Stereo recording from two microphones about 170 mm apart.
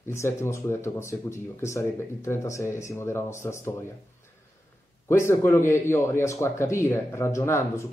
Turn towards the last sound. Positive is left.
turn(degrees=15)  # may be behind; listen again after turning